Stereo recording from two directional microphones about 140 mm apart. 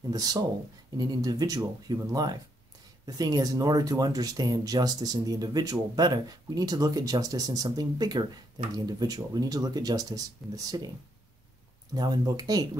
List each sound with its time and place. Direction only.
0.1 s speech: 25° right (ahead or behind)
11.9 s speech: 30° right (ahead or behind)